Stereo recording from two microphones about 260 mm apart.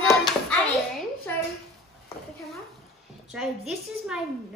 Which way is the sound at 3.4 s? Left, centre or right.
Centre.